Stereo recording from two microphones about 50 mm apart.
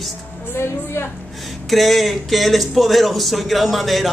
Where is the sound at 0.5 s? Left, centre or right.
Left.